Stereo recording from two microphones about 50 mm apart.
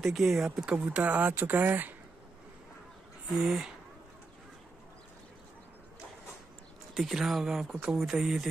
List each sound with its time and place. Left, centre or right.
0.0 s speech: centre
0.7 s speech: right
3.3 s speech: centre
6.9 s speech: centre